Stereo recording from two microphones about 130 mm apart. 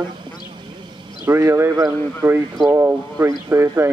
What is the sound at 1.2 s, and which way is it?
Speech, 20° right (ahead or behind).